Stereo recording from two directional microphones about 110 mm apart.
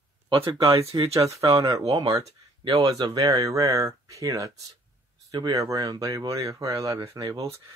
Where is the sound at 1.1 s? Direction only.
30° right (ahead or behind).